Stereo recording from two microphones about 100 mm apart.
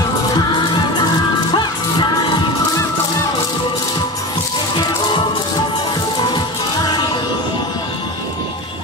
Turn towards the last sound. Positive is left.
turn(degrees=50)  # may be behind; listen again after turning